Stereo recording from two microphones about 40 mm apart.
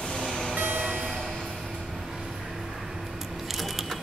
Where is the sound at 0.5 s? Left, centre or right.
Right.